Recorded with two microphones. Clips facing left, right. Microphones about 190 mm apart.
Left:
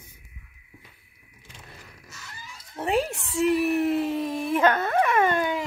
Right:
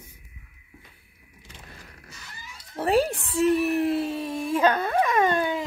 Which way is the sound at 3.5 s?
15° left (ahead or behind).